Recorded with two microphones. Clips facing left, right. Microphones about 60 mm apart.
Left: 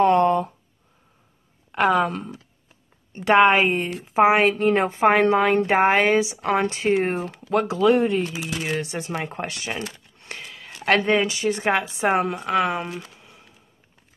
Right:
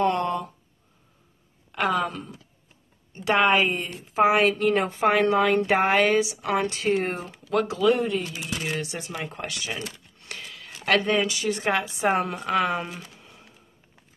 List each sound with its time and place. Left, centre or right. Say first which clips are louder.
0.0 s a sound: left 7 dB; left
1.7 s speech: left 5 dB; left
4.1 s a woman's voice: left 3 dB; centre
4.4 s speech: left 2 dB; left
8.5 s a woman's voice: left 3 dB; centre
8.8 s speech: left 4 dB; left
10.1 s a sound: left 2 dB; left
10.4 s a sound: left 2 dB; centre
10.9 s speech: left 3 dB; left
12.1 s a woman's voice: left 3 dB; centre
12.9 s speech: left 5 dB; centre